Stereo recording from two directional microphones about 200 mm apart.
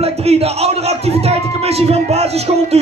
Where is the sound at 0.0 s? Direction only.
30° right (ahead or behind).